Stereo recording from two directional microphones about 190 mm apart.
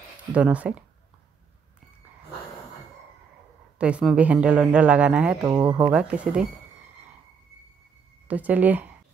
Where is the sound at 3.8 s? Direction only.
5° right (ahead or behind).